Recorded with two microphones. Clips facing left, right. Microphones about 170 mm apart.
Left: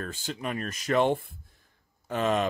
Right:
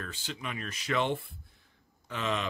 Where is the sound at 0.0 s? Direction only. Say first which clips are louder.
Left 6 dB; 45° left (ahead or behind).